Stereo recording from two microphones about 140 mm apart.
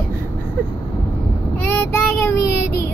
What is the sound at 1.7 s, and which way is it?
Child singing, 20° left (ahead or behind).